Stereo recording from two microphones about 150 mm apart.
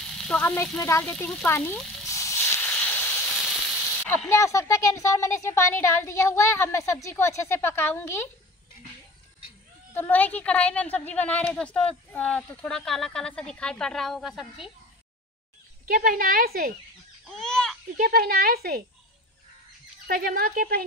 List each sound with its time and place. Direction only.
0.6 s a woman's voice: 20° left (ahead or behind)
2.1 s hiss: 20° left (ahead or behind)
3.4 s a sound: 5° left (ahead or behind)
4.3 s a woman's voice: 20° left (ahead or behind)
9.9 s a woman's voice: 10° left (ahead or behind)
15.9 s a woman's voice: 70° right (ahead or behind)
17.3 s babbling: 5° left (ahead or behind)
17.9 s speech: 85° right
20.1 s a woman's voice: 80° right